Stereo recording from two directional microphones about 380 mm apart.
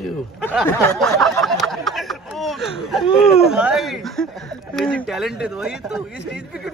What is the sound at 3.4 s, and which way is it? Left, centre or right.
Speech, centre.